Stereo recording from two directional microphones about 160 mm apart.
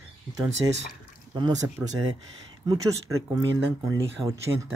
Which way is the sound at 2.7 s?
20° right (ahead or behind).